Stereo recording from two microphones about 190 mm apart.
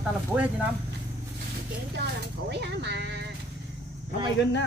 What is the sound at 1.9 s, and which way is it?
Speech, 60° right (ahead or behind).